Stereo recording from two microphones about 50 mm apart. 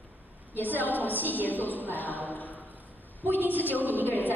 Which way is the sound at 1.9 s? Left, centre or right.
Left.